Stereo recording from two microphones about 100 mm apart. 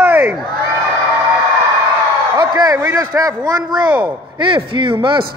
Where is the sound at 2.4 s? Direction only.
45° right (ahead or behind).